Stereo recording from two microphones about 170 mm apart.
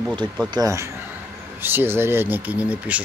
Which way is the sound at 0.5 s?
20° right (ahead or behind).